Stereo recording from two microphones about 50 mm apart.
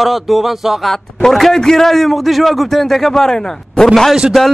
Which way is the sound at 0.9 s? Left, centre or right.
Centre.